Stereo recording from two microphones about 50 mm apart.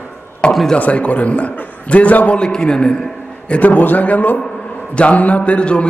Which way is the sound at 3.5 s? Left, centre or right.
Left.